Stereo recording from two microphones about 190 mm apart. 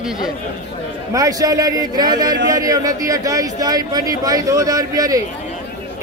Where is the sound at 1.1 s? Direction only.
20° right (ahead or behind).